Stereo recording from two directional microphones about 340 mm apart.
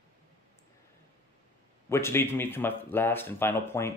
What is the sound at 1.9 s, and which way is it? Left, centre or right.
Speech, centre.